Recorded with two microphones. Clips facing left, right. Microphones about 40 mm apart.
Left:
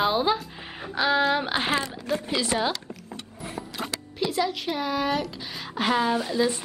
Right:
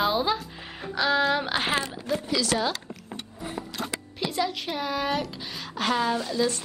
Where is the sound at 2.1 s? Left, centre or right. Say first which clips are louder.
Even; left.